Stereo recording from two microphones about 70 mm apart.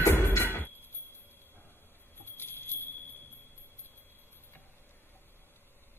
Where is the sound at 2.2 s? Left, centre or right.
Left.